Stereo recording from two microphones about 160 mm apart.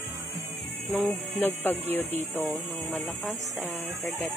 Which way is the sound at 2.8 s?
10° left (ahead or behind).